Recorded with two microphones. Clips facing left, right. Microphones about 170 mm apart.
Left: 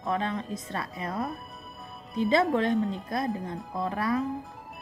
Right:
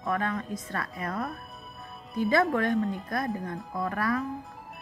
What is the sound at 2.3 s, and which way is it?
Speech, 25° left (ahead or behind).